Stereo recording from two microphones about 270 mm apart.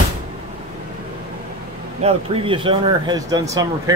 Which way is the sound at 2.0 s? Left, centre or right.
Centre.